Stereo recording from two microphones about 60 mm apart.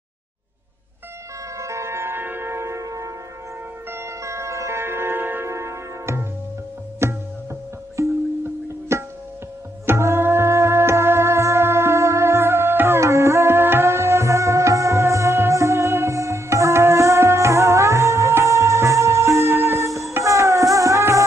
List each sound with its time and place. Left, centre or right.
1.6 s music: right
3.9 s music: right
5.5 s music: right
8.0 s music: right